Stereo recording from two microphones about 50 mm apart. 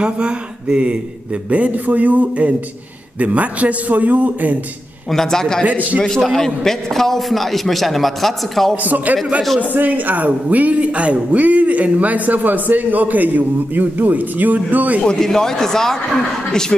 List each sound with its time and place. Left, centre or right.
0.0 s a man's voice: right
5.1 s a man's voice: centre
8.8 s a man's voice: right
15.0 s speech: centre